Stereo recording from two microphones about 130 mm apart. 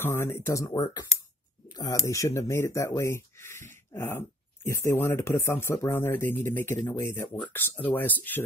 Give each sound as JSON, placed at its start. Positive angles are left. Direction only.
{"t": 0.0, "sound": "speech", "side_deg": 20}